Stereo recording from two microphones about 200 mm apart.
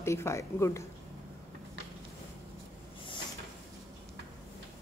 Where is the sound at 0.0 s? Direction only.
15° left (ahead or behind).